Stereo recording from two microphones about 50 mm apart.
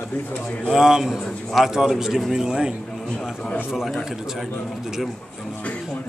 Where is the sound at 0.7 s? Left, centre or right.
Centre.